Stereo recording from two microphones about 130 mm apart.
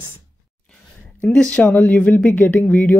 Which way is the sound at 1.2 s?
5° left (ahead or behind).